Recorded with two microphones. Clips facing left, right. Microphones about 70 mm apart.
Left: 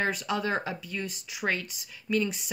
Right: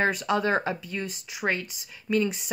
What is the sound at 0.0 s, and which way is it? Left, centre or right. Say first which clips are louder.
Speech: right 4 dB; right.